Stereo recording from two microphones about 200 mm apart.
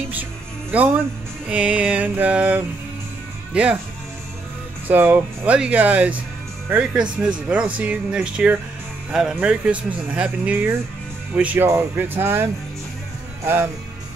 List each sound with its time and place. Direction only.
0.1 s music: 10° right (ahead or behind)
1.5 s speech: 5° right (ahead or behind)
4.8 s speech: 10° right (ahead or behind)